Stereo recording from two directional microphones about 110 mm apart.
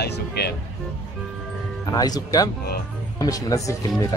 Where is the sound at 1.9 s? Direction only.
35° left (ahead or behind).